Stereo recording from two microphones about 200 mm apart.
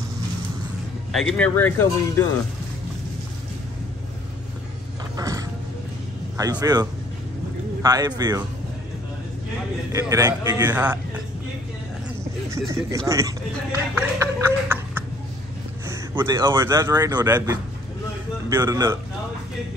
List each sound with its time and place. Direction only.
1.1 s speech: 5° left (ahead or behind)
5.1 s music: 15° right (ahead or behind)
6.3 s speech: 15° right (ahead or behind)
9.9 s speech: 15° right (ahead or behind)
12.6 s speech: 15° right (ahead or behind)